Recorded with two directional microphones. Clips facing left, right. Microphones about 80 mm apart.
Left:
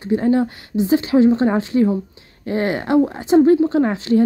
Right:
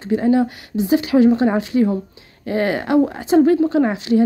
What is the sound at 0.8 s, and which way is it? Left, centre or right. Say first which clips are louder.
Speech: even; left.